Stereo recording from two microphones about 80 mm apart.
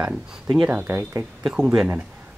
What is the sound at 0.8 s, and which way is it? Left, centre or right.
Speech, right.